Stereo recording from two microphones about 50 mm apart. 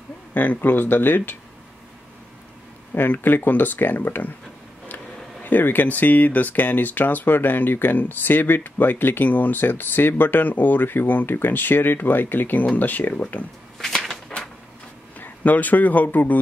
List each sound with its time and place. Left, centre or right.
0.3 s speech: left
2.9 s speech: left
13.7 s a sound: centre
15.1 s a man's voice: left